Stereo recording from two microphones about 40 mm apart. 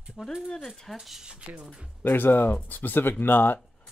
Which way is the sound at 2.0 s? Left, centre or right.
Left.